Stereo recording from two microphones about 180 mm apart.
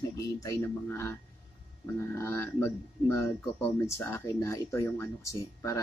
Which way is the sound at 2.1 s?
15° left (ahead or behind).